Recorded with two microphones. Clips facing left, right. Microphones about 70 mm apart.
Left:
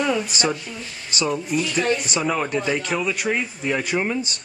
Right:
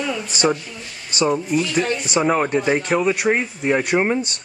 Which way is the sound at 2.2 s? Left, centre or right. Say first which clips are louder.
Right 5 dB; right.